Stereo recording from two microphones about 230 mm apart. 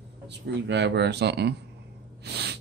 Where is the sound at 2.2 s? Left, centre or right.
Right.